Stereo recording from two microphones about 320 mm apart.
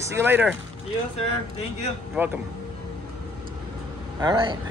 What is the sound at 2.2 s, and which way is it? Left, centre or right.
Speech, centre.